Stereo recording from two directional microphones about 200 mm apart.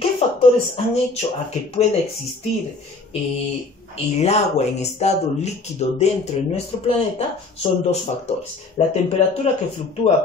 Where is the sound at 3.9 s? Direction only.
30° left (ahead or behind).